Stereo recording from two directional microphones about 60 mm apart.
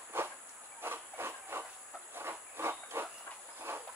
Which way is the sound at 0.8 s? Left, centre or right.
Right.